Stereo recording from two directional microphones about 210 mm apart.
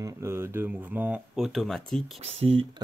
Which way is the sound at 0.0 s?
15° right (ahead or behind).